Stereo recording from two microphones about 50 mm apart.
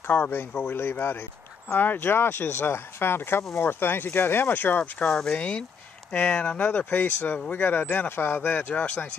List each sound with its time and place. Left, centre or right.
0.0 s speech: left
5.1 s speech: centre
5.4 s speech: left
8.5 s speech: left